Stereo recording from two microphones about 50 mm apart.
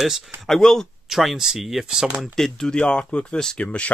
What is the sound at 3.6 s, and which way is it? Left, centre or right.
Speech, left.